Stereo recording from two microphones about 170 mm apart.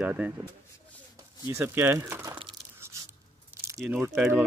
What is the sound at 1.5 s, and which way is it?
Speech, 15° right (ahead or behind).